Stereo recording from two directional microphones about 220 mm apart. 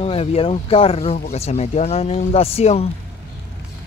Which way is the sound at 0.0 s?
25° left (ahead or behind).